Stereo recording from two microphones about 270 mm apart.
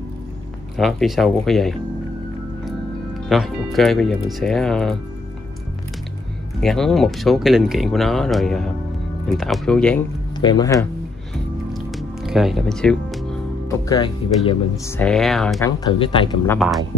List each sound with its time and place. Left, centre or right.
0.7 s speech: centre
3.3 s speech: centre
6.6 s speech: centre
10.3 s speech: centre
11.7 s music: centre
13.8 s speech: centre
15.0 s speech: centre
15.8 s speech: centre
16.4 s speech: centre